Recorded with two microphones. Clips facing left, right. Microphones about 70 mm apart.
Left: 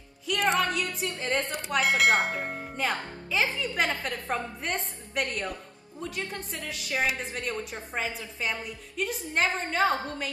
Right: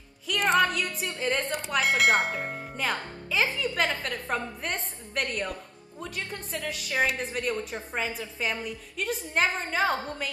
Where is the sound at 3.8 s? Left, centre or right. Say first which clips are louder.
Even; centre.